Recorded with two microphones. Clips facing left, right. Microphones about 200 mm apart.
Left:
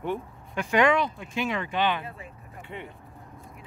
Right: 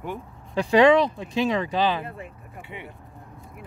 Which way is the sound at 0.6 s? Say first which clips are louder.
Right 6 dB; 35° right (ahead or behind).